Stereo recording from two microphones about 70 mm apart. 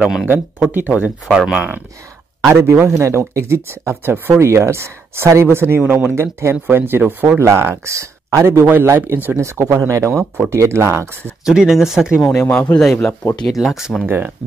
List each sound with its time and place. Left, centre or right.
0.3 s speech: right
1.2 s speech: centre
2.5 s speech: right
6.1 s speech: right
7.4 s speech: right
9.4 s speech: right
11.4 s speech: centre
12.4 s speech: centre
12.7 s speech: centre
14.0 s speech: right